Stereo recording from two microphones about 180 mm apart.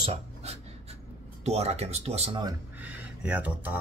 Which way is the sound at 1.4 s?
35° right (ahead or behind).